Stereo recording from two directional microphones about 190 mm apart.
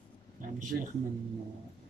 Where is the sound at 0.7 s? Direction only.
65° right (ahead or behind).